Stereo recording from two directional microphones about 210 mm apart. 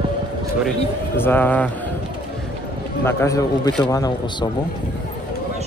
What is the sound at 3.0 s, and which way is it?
Speech, 15° left (ahead or behind).